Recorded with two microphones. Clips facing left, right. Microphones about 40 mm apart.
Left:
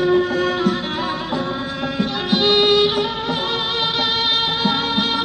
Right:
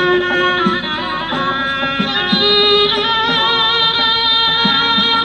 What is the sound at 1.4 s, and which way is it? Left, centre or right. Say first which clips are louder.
Music: right 7 dB; right.